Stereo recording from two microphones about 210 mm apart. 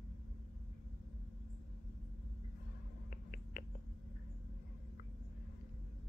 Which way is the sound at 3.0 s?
40° left (ahead or behind).